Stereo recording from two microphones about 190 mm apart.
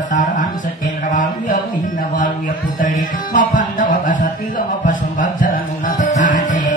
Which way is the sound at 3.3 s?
45° left (ahead or behind).